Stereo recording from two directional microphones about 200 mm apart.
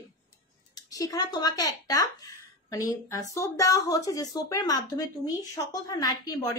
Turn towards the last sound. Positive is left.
turn(degrees=20)  # may be behind; listen again after turning